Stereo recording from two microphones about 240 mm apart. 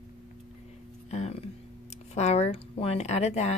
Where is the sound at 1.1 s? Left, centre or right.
Left.